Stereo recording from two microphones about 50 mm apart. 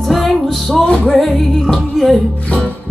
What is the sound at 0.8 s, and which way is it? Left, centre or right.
Music, left.